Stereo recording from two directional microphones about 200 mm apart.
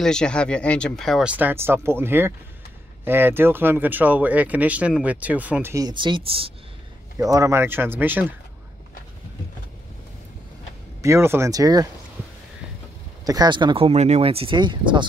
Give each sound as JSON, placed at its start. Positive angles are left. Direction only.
{"t": 0.0, "sound": "speech", "side_deg": 5}
{"t": 7.2, "sound": "speech", "side_deg": -15}
{"t": 11.0, "sound": "speech", "side_deg": -15}
{"t": 13.2, "sound": "speech", "side_deg": -20}